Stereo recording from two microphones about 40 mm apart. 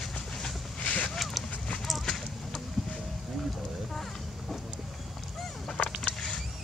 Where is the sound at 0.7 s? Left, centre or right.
Left.